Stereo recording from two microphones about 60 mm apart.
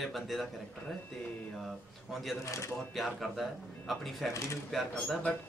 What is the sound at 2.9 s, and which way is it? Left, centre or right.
A man's voice, centre.